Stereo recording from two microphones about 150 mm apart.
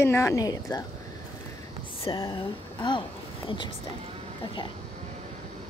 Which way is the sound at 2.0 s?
30° left (ahead or behind).